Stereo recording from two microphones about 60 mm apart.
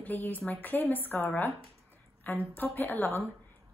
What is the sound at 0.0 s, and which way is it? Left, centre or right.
A woman's voice, left.